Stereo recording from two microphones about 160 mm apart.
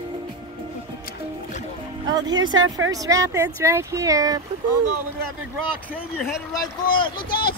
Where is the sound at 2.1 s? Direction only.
25° right (ahead or behind).